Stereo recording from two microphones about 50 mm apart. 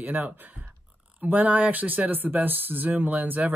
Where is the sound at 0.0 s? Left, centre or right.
Right.